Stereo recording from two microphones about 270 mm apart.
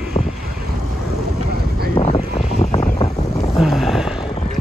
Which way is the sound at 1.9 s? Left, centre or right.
Left.